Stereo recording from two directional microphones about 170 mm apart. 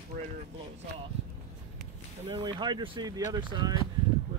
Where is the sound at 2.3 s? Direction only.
30° right (ahead or behind).